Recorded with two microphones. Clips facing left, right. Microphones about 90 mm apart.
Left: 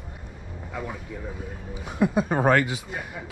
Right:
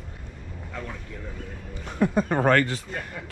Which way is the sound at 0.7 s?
10° left (ahead or behind).